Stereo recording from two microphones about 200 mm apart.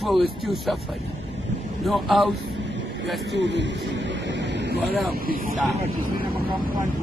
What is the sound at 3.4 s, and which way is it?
Speech, 60° right (ahead or behind).